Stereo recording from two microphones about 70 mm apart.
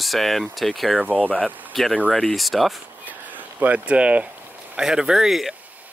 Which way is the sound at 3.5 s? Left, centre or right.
Right.